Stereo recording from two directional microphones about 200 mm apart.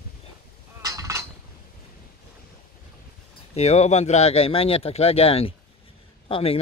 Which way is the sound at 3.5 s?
35° left (ahead or behind).